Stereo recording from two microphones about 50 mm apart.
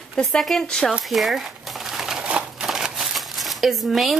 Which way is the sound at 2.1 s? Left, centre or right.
Right.